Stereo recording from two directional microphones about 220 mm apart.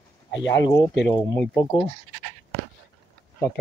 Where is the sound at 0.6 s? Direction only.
10° left (ahead or behind).